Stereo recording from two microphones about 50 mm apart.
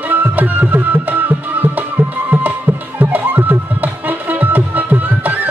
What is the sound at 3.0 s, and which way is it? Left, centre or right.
Music, right.